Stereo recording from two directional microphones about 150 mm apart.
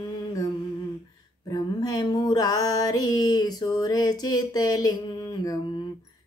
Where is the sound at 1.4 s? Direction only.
25° left (ahead or behind).